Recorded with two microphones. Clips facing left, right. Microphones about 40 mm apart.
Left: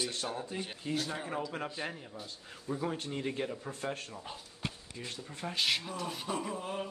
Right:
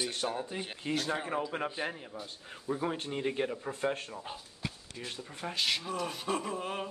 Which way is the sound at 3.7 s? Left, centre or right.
Right.